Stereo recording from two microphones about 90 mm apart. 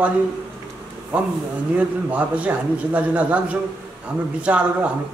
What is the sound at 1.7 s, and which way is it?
A man's voice, 15° right (ahead or behind).